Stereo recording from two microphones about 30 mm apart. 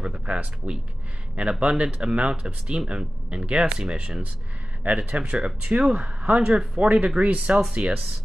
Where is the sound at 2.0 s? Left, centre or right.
Right.